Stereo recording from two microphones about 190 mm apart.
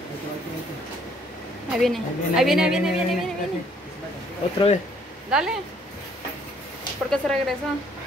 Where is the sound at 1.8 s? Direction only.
Centre (ahead or behind).